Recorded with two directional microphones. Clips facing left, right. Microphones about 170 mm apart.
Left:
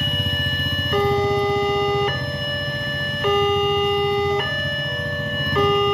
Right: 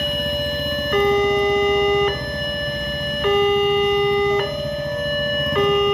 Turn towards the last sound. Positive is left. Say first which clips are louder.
# right 2 dB
turn(degrees=-15)  # may be behind; listen again after turning